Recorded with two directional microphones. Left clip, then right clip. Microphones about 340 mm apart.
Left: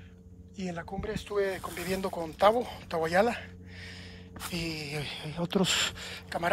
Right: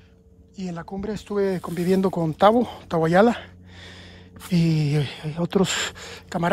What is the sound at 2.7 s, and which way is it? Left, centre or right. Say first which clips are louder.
Speech: right 8 dB; right.